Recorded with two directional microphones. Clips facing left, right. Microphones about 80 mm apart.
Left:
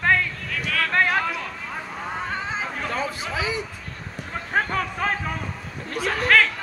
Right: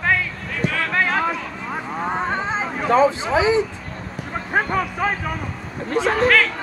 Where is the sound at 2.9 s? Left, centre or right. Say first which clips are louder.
Right 17 dB; right.